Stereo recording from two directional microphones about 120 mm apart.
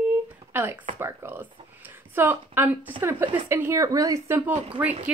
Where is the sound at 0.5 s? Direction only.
20° right (ahead or behind).